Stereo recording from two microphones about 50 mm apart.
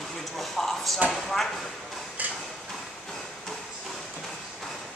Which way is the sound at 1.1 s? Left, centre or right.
Centre.